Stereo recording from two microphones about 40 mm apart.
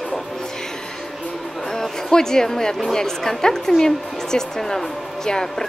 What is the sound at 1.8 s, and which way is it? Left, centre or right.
A woman's voice, centre.